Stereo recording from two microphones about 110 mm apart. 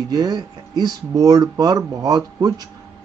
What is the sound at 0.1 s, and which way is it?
Speech, 35° right (ahead or behind).